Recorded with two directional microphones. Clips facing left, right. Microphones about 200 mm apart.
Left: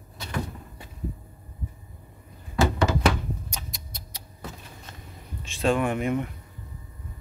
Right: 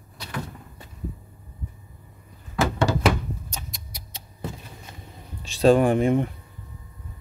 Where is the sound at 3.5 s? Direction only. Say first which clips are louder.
Right 1 dB; 15° left (ahead or behind).